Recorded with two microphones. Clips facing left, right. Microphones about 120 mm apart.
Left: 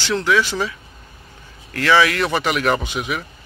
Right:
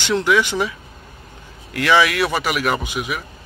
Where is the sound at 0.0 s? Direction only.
15° right (ahead or behind).